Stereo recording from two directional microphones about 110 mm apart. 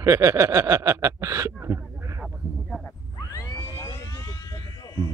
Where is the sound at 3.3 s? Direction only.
35° left (ahead or behind).